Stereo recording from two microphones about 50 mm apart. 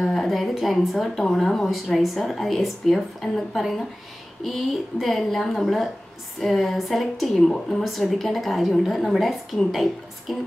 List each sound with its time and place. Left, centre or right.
0.0 s a woman's voice: centre